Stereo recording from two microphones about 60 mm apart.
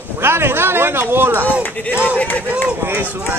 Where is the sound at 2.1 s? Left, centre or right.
Left.